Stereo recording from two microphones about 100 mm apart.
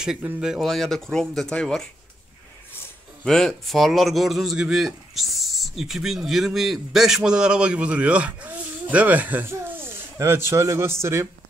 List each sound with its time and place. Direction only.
0.4 s speech: 5° right (ahead or behind)
3.3 s speech: 5° left (ahead or behind); by 11.2 s 25° right (ahead or behind)